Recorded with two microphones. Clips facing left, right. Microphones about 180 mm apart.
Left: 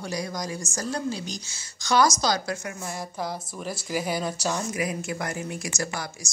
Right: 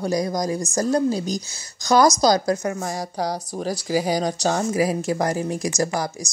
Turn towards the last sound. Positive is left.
turn(degrees=-40)  # may be behind; listen again after turning